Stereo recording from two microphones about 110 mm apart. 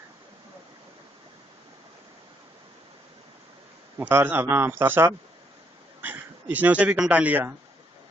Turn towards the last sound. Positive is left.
turn(degrees=-15)  # may be behind; listen again after turning